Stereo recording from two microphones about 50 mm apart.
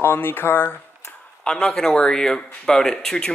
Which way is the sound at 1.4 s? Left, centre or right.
Centre.